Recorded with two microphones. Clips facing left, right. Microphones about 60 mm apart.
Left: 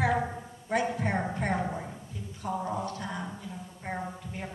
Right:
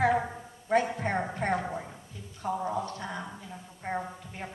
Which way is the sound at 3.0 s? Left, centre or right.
Centre.